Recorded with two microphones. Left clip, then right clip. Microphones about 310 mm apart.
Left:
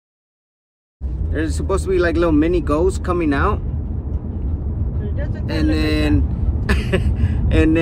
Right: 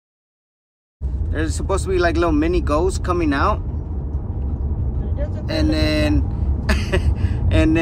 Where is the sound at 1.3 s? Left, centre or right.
Centre.